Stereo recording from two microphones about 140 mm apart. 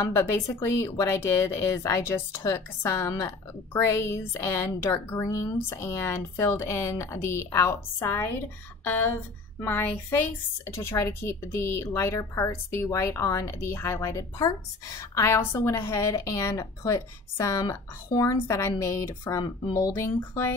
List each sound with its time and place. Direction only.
0.1 s a woman's voice: 15° left (ahead or behind)
19.4 s speech: 35° left (ahead or behind)
19.9 s a woman's voice: 15° left (ahead or behind)